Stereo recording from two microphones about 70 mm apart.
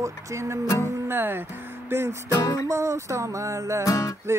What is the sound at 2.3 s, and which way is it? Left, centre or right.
Music, left.